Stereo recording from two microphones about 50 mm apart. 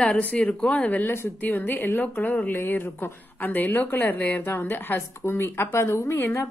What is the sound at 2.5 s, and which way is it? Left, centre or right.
A woman's voice, left.